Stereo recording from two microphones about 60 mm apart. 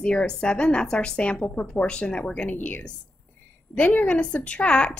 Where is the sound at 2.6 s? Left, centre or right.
Left.